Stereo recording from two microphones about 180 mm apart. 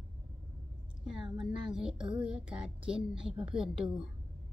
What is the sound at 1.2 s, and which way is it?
Speech, 25° right (ahead or behind).